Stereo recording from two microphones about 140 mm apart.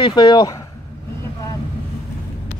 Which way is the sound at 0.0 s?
30° left (ahead or behind).